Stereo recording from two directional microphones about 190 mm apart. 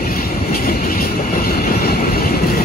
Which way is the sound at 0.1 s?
50° left (ahead or behind).